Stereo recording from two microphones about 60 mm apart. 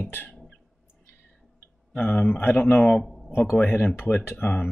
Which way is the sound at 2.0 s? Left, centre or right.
Left.